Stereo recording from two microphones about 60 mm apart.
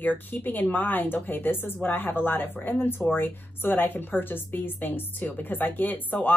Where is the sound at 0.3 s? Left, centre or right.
Left.